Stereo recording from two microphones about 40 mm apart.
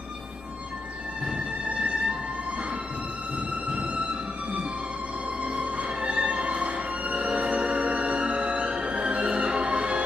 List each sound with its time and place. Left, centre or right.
1.7 s music: right
3.7 s music: right
5.4 s music: right